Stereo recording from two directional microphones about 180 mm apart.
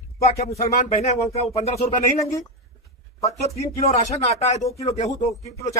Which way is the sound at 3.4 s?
35° left (ahead or behind).